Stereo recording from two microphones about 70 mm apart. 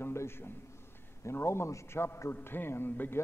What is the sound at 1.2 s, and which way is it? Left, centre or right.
A man's voice, left.